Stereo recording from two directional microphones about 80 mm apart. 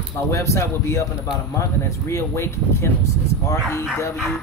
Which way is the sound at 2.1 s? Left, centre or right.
Left.